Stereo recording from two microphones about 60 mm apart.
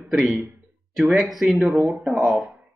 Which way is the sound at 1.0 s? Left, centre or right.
Centre.